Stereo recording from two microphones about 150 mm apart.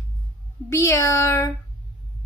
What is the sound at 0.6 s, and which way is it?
Speech, 20° left (ahead or behind).